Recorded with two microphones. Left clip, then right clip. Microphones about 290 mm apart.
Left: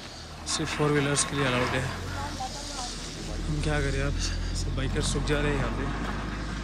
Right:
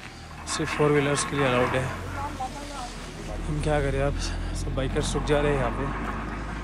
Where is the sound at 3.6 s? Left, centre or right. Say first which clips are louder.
Right 5 dB; centre.